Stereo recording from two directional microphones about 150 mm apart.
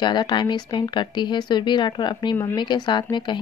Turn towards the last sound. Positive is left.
turn(degrees=30)  # may be behind; listen again after turning